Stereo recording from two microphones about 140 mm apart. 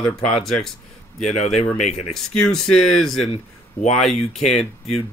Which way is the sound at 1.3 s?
50° left (ahead or behind).